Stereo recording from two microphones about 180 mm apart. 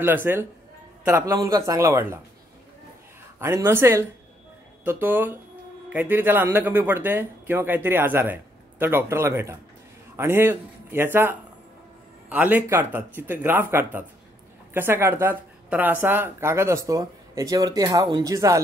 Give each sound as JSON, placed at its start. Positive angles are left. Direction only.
{"t": 0.0, "sound": "speech", "side_deg": -10}
{"t": 3.3, "sound": "speech", "side_deg": -15}